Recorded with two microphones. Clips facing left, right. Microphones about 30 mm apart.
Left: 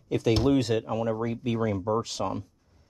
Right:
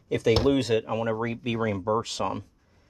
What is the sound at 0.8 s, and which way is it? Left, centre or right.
Speech, right.